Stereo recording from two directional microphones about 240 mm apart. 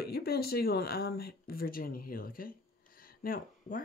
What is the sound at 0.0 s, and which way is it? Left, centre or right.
Speech, left.